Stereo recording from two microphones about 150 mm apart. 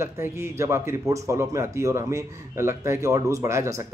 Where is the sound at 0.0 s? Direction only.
15° right (ahead or behind).